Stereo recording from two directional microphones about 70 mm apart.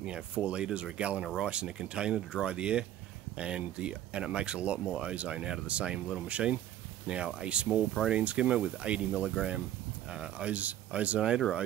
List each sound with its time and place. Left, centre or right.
0.0 s speech: centre